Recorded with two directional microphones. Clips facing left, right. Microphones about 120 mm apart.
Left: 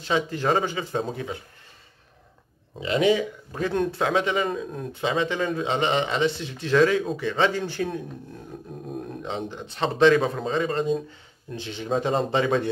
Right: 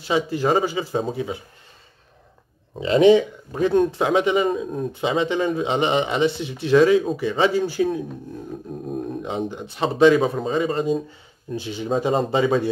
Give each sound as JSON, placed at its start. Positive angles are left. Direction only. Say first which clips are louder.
{"t": 0.0, "sound": "a man's voice", "louder": "right 3 dB", "side_deg": -10}
{"t": 2.8, "sound": "speech", "louder": "right 7 dB", "side_deg": -30}
{"t": 3.5, "sound": "a man's voice", "louder": "right 6 dB", "side_deg": -15}